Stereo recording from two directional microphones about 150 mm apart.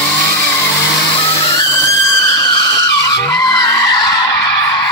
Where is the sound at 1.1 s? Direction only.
40° left (ahead or behind).